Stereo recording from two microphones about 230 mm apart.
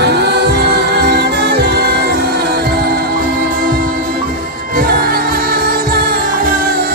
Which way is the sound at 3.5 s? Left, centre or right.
Right.